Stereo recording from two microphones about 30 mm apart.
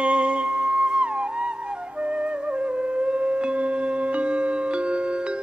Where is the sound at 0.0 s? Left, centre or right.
Right.